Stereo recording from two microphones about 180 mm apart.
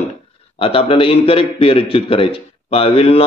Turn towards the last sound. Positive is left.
turn(degrees=30)  # may be behind; listen again after turning